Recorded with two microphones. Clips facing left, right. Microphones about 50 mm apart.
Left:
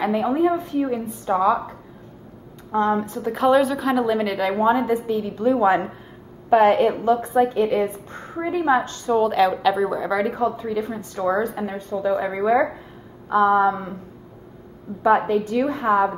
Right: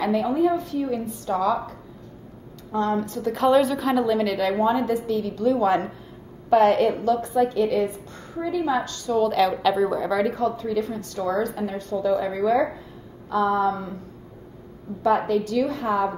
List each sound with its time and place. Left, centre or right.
0.0 s a woman's voice: left
3.3 s a woman's voice: centre; by 9.2 s left
9.2 s a woman's voice: centre
15.0 s a woman's voice: left